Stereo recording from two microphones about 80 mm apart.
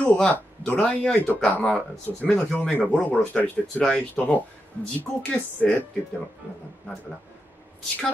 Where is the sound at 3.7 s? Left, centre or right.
Centre.